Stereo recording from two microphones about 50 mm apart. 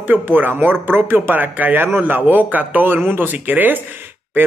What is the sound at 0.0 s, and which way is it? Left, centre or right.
Speech, right.